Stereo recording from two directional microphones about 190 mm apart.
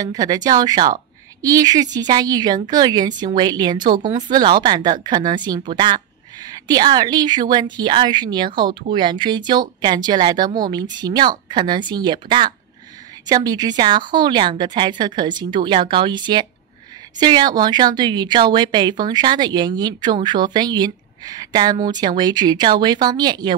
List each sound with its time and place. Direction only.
0.0 s a woman's voice: 20° right (ahead or behind)